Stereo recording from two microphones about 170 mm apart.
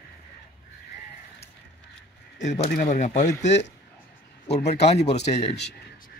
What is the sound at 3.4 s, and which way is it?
Speech, 90° left.